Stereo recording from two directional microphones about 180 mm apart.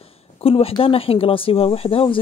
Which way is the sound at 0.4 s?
35° left (ahead or behind).